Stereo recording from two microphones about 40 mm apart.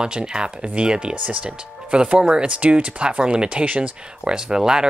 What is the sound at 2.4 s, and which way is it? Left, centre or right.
Speech, right.